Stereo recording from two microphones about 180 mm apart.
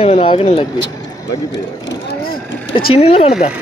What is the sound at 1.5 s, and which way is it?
Speech, 65° left (ahead or behind).